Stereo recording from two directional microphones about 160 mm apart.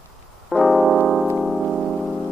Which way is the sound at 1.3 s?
Centre (ahead or behind).